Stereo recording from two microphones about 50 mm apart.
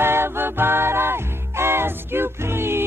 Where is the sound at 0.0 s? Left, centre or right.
Right.